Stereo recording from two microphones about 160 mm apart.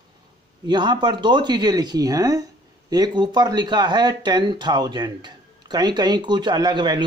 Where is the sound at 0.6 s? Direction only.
30° right (ahead or behind).